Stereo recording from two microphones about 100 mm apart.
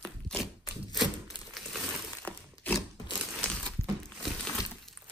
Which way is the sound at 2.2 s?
15° left (ahead or behind).